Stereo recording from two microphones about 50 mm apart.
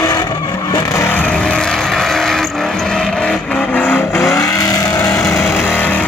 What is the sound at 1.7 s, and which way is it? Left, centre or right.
Vehicle, centre.